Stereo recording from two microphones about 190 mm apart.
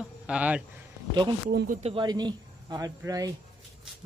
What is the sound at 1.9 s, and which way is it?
Speech, 20° right (ahead or behind).